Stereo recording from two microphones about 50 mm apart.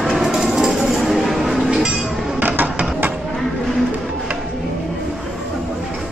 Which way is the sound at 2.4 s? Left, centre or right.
Right.